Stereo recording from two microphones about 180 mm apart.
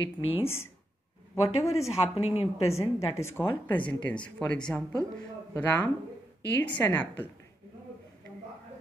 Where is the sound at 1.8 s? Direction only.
35° left (ahead or behind).